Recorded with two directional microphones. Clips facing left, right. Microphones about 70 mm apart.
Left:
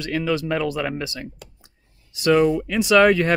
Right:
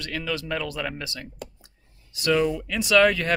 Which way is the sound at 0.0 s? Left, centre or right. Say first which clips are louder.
Left 7 dB; left.